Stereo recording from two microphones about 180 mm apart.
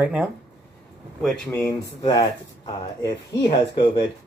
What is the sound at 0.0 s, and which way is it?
Speech, 10° right (ahead or behind).